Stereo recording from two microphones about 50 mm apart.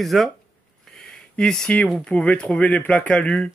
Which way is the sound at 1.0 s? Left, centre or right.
Centre.